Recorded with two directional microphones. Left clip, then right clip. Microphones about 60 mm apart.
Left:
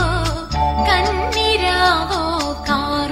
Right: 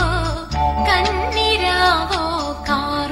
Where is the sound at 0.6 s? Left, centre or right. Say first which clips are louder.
Left 1 dB; right.